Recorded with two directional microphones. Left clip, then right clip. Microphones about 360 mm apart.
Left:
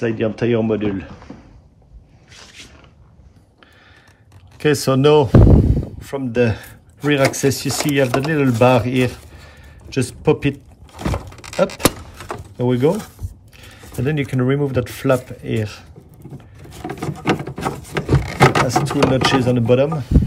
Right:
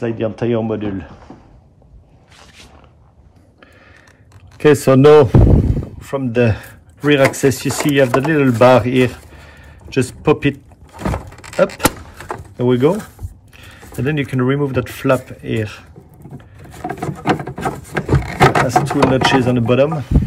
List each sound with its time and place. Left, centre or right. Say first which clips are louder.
0.0 s speech: even; centre
5.0 s speech: right 3 dB; right
5.8 s speech: right 3 dB; centre
16.3 s a sound: right 4 dB; centre
17.8 s speech: right 2 dB; centre